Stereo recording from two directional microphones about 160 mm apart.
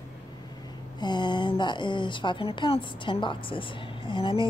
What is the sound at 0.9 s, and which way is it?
Speech, 30° left (ahead or behind).